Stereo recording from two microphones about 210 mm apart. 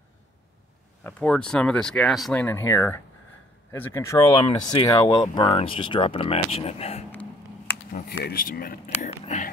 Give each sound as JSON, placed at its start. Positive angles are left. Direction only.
{"t": 1.0, "sound": "speech", "side_deg": 5}
{"t": 8.1, "sound": "speech", "side_deg": 50}